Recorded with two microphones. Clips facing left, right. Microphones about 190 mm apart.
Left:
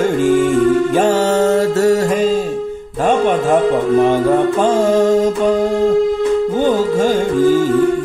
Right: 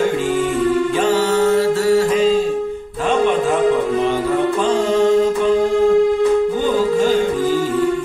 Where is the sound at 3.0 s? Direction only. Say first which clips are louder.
Left 2 dB; 45° left (ahead or behind).